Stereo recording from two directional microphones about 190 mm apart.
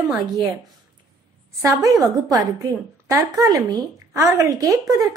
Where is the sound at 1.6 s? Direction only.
15° right (ahead or behind).